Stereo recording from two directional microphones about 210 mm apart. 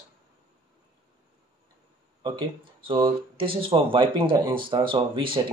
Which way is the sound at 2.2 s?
25° right (ahead or behind).